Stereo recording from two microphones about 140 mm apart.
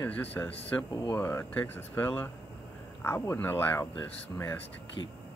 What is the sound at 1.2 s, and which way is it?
Speech, 15° left (ahead or behind).